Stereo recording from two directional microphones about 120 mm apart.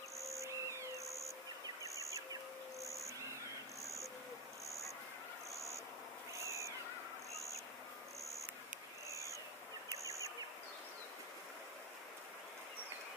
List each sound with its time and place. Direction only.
0.2 s owl: 25° right (ahead or behind)
1.8 s bird: 25° right (ahead or behind)
2.9 s owl: 25° right (ahead or behind)
6.4 s owl: 25° right (ahead or behind)
9.1 s a sound: 25° right (ahead or behind)